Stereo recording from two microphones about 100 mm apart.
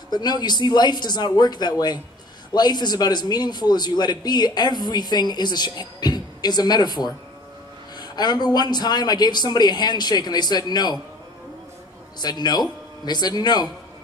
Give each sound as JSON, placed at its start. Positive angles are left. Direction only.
{"t": 0.1, "sound": "a man's voice", "side_deg": 45}
{"t": 12.2, "sound": "a man's voice", "side_deg": 45}